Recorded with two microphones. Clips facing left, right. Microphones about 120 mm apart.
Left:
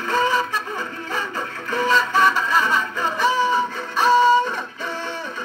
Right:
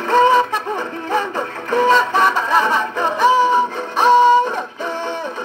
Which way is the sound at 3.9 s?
55° right (ahead or behind).